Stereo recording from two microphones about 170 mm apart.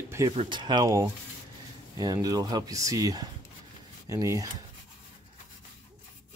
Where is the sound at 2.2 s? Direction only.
20° right (ahead or behind).